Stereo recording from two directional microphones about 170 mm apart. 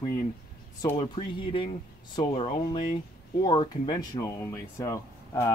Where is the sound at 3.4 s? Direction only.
30° left (ahead or behind).